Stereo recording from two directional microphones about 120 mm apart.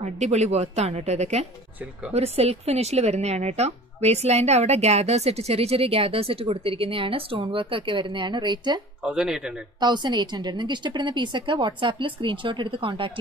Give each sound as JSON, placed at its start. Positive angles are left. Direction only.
{"t": 0.0, "sound": "speech", "side_deg": -70}
{"t": 9.0, "sound": "speech", "side_deg": -5}
{"t": 9.8, "sound": "a woman's voice", "side_deg": -40}